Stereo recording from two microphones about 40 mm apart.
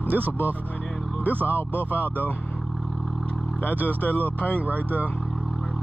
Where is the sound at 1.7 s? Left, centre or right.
Left.